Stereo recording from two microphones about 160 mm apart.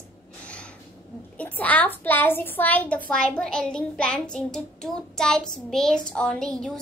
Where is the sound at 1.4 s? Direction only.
10° left (ahead or behind).